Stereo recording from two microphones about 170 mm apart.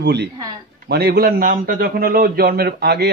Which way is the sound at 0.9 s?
65° right (ahead or behind).